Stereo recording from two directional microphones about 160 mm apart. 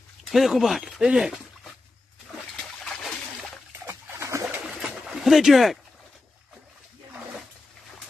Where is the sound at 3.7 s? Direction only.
15° right (ahead or behind).